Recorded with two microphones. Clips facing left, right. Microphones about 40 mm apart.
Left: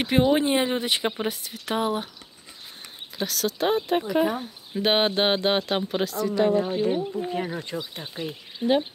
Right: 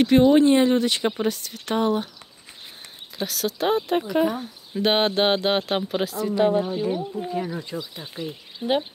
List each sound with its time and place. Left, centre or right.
0.0 s speech: centre
3.2 s speech: centre
6.6 s speech: left
8.0 s speech: left